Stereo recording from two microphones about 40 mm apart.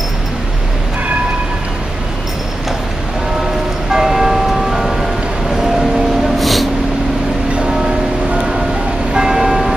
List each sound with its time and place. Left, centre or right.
3.9 s music: centre
6.2 s snort: centre
9.1 s church bell: centre